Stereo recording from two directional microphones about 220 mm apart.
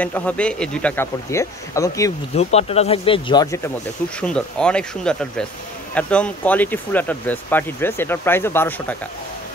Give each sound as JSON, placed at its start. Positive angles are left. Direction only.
{"t": 0.0, "sound": "speech", "side_deg": 5}
{"t": 2.3, "sound": "speech", "side_deg": 30}
{"t": 4.2, "sound": "speech", "side_deg": 5}